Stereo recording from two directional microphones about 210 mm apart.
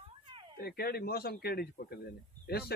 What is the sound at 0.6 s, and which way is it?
Speech, 45° left (ahead or behind).